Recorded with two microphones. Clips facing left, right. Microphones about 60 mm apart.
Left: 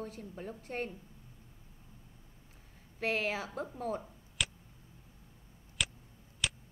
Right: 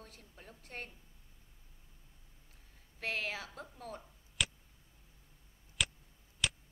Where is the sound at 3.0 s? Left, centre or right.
Centre.